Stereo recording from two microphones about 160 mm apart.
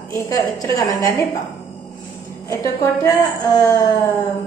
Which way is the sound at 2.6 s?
20° left (ahead or behind).